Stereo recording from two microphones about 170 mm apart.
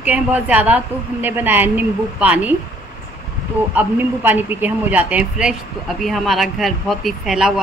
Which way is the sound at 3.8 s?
10° right (ahead or behind).